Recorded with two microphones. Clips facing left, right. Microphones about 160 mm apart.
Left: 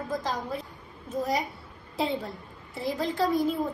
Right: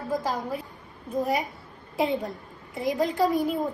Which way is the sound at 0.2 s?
10° right (ahead or behind).